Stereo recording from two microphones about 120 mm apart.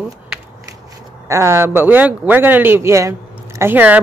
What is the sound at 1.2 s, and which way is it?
Speech, 25° right (ahead or behind).